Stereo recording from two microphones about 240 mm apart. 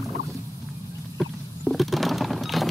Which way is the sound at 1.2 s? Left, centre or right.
Centre.